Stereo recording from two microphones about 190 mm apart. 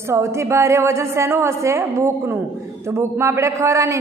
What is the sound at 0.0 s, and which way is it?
A woman's voice, 15° right (ahead or behind).